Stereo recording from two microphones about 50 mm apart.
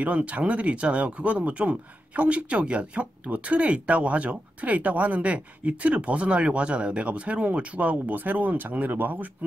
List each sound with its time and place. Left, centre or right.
0.0 s speech: right